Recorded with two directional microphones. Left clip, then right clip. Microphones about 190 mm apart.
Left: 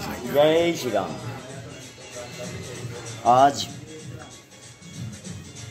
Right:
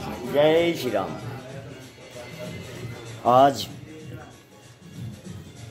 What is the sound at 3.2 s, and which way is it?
Speech, 55° right (ahead or behind).